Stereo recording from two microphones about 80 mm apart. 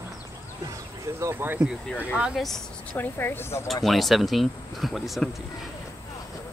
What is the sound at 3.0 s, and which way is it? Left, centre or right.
Speech, left.